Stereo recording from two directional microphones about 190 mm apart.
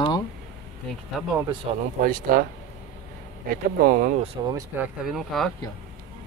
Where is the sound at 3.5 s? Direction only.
50° right (ahead or behind).